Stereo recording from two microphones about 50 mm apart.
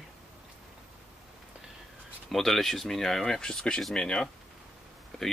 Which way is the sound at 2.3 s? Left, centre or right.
Centre.